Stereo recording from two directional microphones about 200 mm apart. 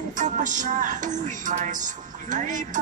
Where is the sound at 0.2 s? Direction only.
40° right (ahead or behind).